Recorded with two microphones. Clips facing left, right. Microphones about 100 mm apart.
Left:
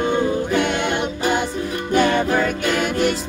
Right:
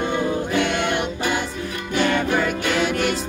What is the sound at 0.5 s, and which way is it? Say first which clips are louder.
Music: left 1 dB; 50° left (ahead or behind).